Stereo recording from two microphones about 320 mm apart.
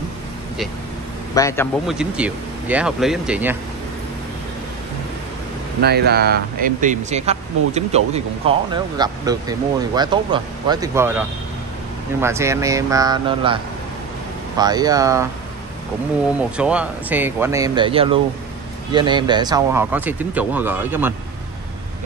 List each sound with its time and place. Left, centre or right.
1.3 s speech: centre
2.0 s speech: centre
5.8 s speech: right; by 13.6 s centre
14.6 s speech: centre
16.3 s speech: centre